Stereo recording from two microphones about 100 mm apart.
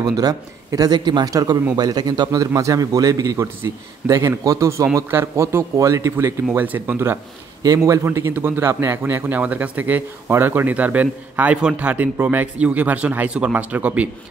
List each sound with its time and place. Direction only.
0.0 s a man's voice: 40° right (ahead or behind)
6.5 s speech: 15° right (ahead or behind)
7.6 s speech: 35° right (ahead or behind); by 14.0 s 15° right (ahead or behind)